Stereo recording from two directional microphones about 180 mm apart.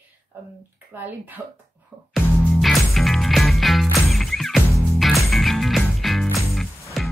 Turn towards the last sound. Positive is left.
turn(degrees=0)  # may be behind; listen again after turning